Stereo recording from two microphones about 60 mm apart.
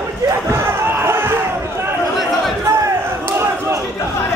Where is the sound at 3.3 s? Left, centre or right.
Right.